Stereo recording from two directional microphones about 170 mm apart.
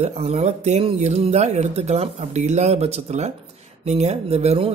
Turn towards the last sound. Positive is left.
turn(degrees=-40)  # may be behind; listen again after turning